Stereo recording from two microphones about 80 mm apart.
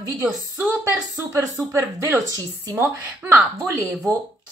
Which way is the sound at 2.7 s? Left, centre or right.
Right.